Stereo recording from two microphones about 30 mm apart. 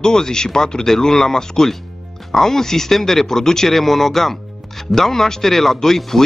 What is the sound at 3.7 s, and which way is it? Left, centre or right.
Speech, centre.